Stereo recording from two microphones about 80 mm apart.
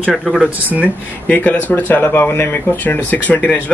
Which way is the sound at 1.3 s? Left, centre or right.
Left.